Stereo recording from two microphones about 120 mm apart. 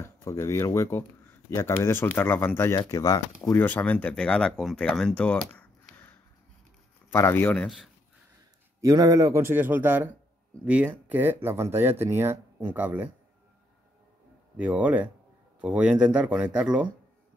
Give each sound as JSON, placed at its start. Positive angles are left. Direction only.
{"t": 0.0, "sound": "speech", "side_deg": 25}
{"t": 3.5, "sound": "speech", "side_deg": 15}
{"t": 7.5, "sound": "a man's voice", "side_deg": 5}
{"t": 8.8, "sound": "speech", "side_deg": -30}
{"t": 14.6, "sound": "speech", "side_deg": -15}